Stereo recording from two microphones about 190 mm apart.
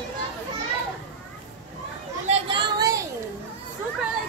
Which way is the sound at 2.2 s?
25° right (ahead or behind).